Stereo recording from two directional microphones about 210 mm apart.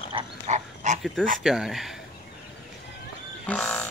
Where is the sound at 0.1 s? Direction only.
35° right (ahead or behind).